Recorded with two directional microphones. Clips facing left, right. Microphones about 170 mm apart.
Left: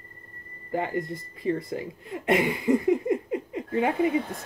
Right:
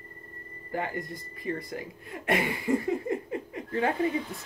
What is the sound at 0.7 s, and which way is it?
Speech, 20° left (ahead or behind).